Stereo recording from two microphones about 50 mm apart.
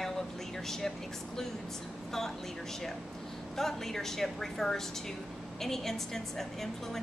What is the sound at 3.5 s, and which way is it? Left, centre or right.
A woman's voice, centre.